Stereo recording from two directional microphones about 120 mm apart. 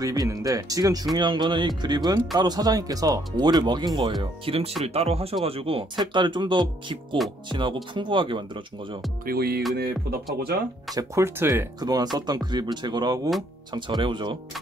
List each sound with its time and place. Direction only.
0.0 s speech: 30° right (ahead or behind)
4.2 s speech: 50° right (ahead or behind)
9.6 s music: centre (ahead or behind)
11.0 s speech: 25° right (ahead or behind)
11.8 s speech: 35° right (ahead or behind)